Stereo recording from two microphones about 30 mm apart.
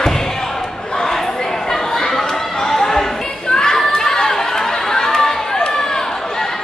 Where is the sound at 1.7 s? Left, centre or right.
Centre.